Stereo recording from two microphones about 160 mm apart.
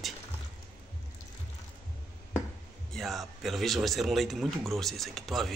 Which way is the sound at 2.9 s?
Centre (ahead or behind).